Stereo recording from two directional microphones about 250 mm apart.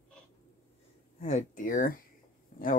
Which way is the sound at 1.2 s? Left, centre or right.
Left.